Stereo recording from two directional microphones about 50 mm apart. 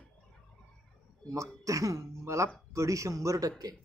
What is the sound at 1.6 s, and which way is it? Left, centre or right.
A woman's voice, right.